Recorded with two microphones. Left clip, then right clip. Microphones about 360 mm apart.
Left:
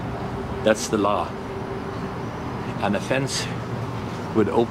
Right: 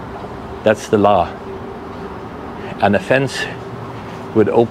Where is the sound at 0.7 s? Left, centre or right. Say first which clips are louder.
Right 7 dB; centre.